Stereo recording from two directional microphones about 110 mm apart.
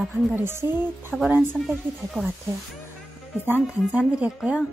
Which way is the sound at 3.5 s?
15° right (ahead or behind).